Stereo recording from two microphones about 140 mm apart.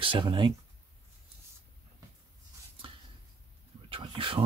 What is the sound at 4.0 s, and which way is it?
Speech, 40° right (ahead or behind).